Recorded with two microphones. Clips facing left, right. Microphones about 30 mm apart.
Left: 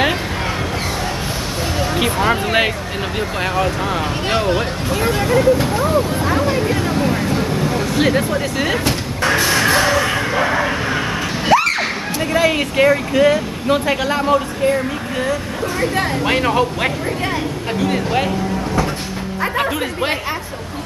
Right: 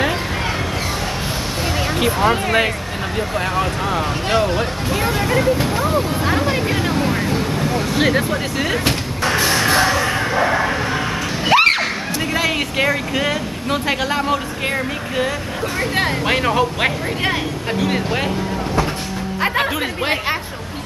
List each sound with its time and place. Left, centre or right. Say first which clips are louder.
2.0 s speech: even; centre
6.9 s vehicle: left 1 dB; centre
9.2 s music: left 2 dB; centre
11.5 s a sound: right 2 dB; right
12.2 s speech: left 4 dB; centre
16.3 s speech: left 2 dB; centre
17.7 s speech: left 1 dB; centre